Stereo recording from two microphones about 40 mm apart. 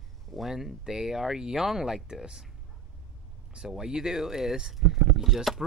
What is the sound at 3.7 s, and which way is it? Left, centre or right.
Speech, centre.